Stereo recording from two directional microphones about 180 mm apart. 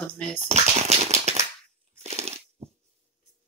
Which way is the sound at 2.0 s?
35° right (ahead or behind).